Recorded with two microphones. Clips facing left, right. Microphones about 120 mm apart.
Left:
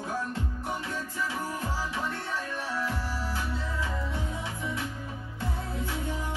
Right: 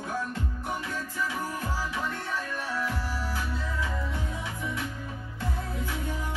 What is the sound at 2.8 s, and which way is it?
Music, 30° left (ahead or behind).